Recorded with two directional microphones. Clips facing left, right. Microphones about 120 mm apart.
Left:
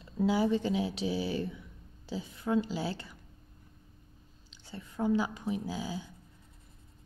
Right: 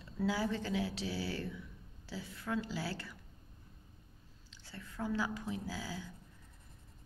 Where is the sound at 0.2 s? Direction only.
20° left (ahead or behind).